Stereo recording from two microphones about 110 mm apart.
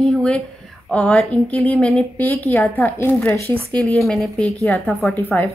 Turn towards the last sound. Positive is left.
turn(degrees=15)  # may be behind; listen again after turning